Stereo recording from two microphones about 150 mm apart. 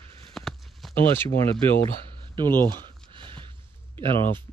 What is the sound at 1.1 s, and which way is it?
Speech, 15° left (ahead or behind).